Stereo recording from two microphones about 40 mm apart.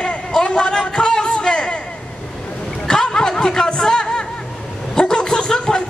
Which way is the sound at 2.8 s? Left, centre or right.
Centre.